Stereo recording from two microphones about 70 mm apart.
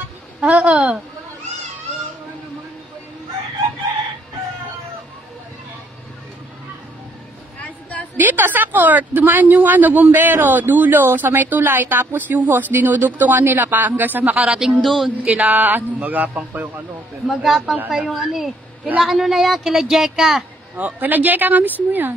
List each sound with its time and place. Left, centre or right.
0.4 s a woman's voice: centre
8.2 s a woman's voice: right
14.4 s speech: centre
14.8 s a woman's voice: centre
15.0 s a woman's voice: right
17.3 s a woman's voice: centre
20.7 s a woman's voice: right